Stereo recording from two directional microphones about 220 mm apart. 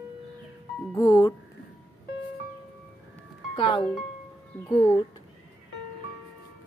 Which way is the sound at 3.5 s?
20° left (ahead or behind).